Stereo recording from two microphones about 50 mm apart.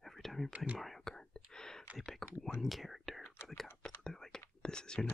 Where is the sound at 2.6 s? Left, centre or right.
Centre.